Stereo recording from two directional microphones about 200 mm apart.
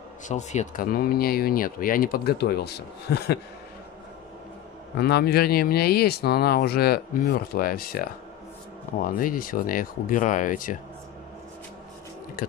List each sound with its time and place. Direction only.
0.3 s speech: 35° left (ahead or behind); by 3.3 s 50° left (ahead or behind)
4.9 s speech: 55° left (ahead or behind)